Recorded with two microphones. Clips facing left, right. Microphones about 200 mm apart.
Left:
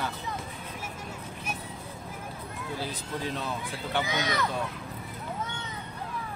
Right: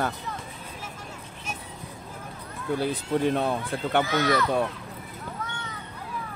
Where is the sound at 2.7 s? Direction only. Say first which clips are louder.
Right 10 dB; 55° right (ahead or behind).